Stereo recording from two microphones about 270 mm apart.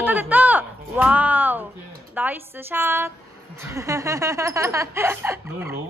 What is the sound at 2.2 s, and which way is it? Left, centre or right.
Chuckle, centre.